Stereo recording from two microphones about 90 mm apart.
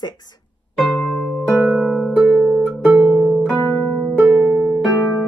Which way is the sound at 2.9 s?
10° right (ahead or behind).